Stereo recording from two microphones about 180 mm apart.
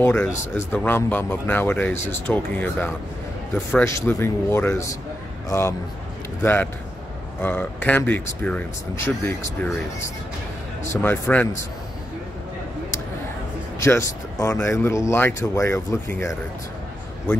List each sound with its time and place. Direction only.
0.0 s speech: 15° left (ahead or behind)
13.8 s speech: 15° left (ahead or behind)